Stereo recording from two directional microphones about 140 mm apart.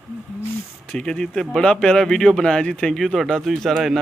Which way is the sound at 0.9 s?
5° left (ahead or behind).